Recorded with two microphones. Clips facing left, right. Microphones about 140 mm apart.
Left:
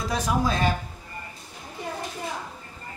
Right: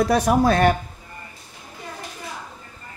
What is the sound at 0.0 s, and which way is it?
Speech, 65° right (ahead or behind).